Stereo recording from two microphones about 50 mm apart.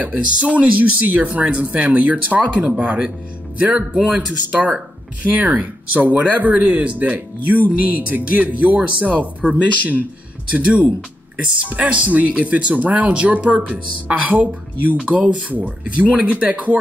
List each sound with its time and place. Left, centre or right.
0.0 s speech: right